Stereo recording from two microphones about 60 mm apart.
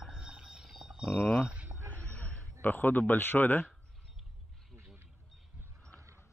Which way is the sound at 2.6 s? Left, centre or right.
Left.